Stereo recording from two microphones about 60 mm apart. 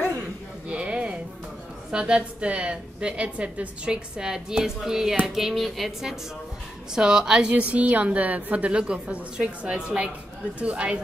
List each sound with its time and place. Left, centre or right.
0.7 s a sound: centre
1.9 s a woman's voice: centre
7.0 s a woman's voice: centre